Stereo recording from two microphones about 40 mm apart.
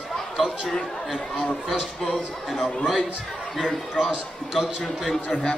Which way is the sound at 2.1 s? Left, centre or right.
Centre.